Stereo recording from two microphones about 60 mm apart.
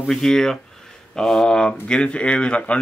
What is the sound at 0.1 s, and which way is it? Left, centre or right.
Speech, centre.